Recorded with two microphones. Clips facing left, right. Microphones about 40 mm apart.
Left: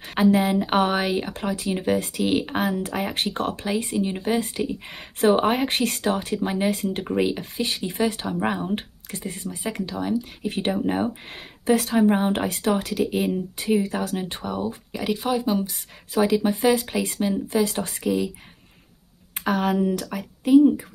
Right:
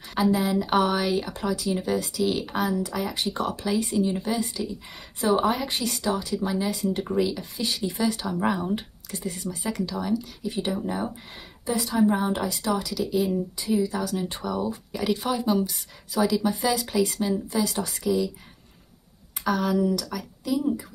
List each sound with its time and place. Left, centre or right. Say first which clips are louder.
0.0 s speech: left 4 dB; left
8.7 s speech: left 2 dB; left
10.4 s a woman's voice: left 4 dB; left
14.4 s speech: even; left
15.7 s speech: left 4 dB; left
19.3 s speech: left 2 dB; left